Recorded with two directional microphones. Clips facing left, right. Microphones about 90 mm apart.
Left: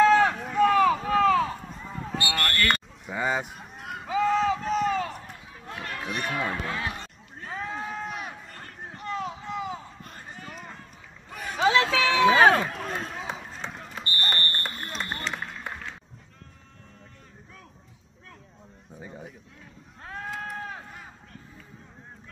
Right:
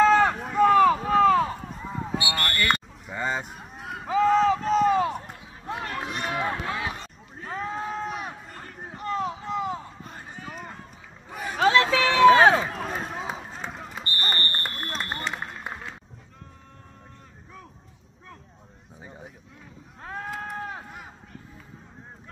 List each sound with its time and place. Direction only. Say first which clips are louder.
0.0 s run: even; centre (ahead or behind)
0.4 s a sound: right 3 dB; 5° right (ahead or behind)
3.1 s a sound: left 2 dB; 5° left (ahead or behind)
3.5 s run: right 1 dB; centre (ahead or behind)
4.8 s run: right 5 dB; 20° right (ahead or behind)
7.4 s a sound: right 3 dB; 5° right (ahead or behind)
11.9 s run: right 1 dB; 5° left (ahead or behind)
12.4 s run: right 1 dB; 15° right (ahead or behind)
12.7 s basketball bounce: right 2 dB; 5° right (ahead or behind)
15.0 s run: right 1 dB; 5° right (ahead or behind)
20.0 s a sound: right 1 dB; 5° right (ahead or behind)
20.7 s run: right 2 dB; 15° right (ahead or behind)